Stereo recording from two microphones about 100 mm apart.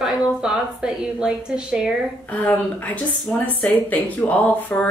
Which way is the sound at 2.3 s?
15° left (ahead or behind).